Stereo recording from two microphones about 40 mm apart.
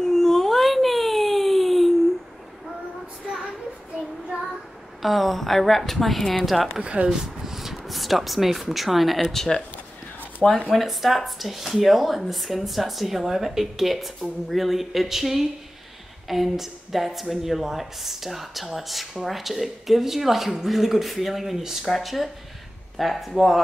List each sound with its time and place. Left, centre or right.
0.0 s a sound: centre
3.3 s child singing: centre
5.0 s speech: centre
6.8 s speech: right
7.1 s speech: centre
10.7 s speech: centre